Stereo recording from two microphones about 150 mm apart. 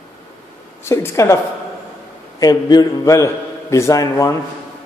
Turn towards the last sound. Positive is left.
turn(degrees=20)  # may be behind; listen again after turning